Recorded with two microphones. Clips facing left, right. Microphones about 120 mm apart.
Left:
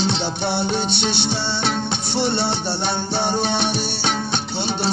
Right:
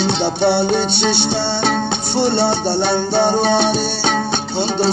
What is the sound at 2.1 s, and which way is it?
Music, 55° right (ahead or behind).